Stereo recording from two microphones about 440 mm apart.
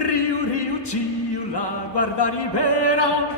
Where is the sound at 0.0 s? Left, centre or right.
Left.